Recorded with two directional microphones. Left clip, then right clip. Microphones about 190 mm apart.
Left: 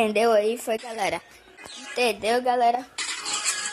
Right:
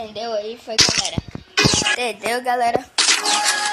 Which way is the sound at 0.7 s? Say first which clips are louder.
Right 9 dB; 15° left (ahead or behind).